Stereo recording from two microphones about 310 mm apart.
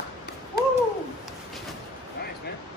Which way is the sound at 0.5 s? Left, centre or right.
Left.